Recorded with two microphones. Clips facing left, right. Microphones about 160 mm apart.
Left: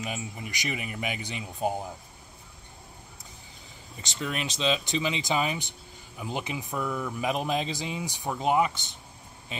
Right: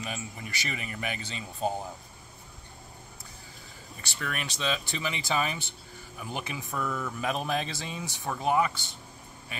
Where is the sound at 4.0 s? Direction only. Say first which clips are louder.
Left 4 dB; 20° left (ahead or behind).